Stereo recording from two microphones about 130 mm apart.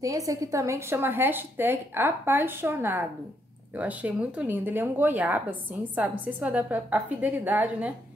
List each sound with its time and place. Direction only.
0.0 s a woman's voice: 25° right (ahead or behind)